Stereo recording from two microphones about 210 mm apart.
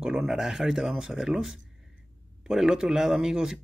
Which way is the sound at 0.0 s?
5° right (ahead or behind).